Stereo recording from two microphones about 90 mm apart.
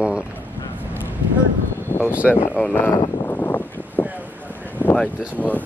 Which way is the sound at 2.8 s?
25° left (ahead or behind).